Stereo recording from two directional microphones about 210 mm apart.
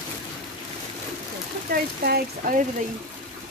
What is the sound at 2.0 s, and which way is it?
Speech, 45° right (ahead or behind).